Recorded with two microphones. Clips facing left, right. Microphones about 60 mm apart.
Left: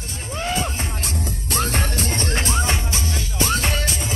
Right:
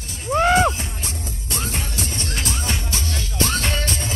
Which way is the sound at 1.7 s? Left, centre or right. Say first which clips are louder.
Left 4 dB; left.